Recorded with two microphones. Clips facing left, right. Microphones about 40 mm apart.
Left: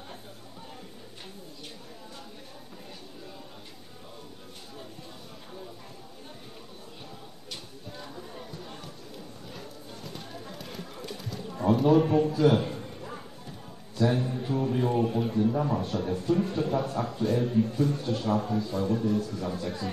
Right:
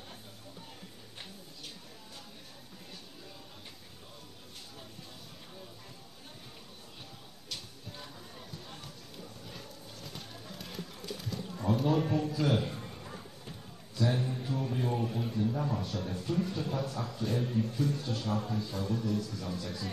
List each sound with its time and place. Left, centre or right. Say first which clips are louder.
7.9 s a sound: left 7 dB; centre
10.0 s clip-clop: left 5 dB; centre
11.8 s a man's voice: left 9 dB; left
12.1 s a man's voice: left 8 dB; left
13.9 s a sound: left 5 dB; left
14.4 s a man's voice: left 7 dB; left